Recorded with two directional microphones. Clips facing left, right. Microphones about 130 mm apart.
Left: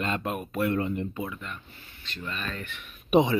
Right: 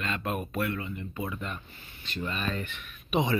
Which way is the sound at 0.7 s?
55° left (ahead or behind).